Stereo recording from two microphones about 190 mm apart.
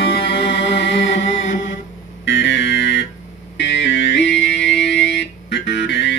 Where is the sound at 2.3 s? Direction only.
70° left (ahead or behind).